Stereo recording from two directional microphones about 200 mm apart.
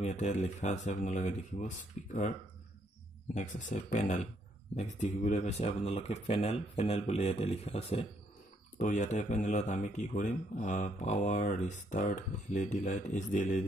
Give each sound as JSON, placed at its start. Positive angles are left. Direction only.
{"t": 0.0, "sound": "speech", "side_deg": 35}
{"t": 3.3, "sound": "speech", "side_deg": 40}